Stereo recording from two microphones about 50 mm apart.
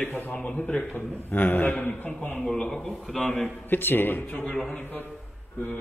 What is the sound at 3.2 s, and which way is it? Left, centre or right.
Speech, left.